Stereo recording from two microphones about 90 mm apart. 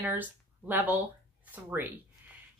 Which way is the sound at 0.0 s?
20° right (ahead or behind).